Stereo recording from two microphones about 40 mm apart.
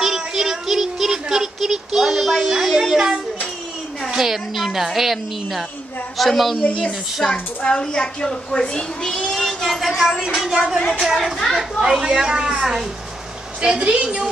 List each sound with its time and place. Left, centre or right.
0.0 s child singing: centre
4.1 s a woman's voice: centre
7.2 s a woman's voice: centre
7.6 s a woman's voice: left
9.3 s a woman's voice: centre
12.4 s a woman's voice: right
13.7 s a woman's voice: right